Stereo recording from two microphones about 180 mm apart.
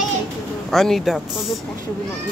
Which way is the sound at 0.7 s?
Centre (ahead or behind).